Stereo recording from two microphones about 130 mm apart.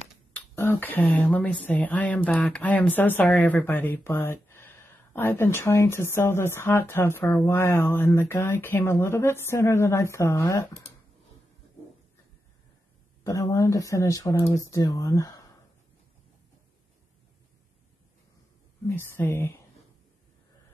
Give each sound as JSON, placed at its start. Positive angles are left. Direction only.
{"t": 0.3, "sound": "speech", "side_deg": 15}
{"t": 13.2, "sound": "speech", "side_deg": 25}
{"t": 18.9, "sound": "speech", "side_deg": 20}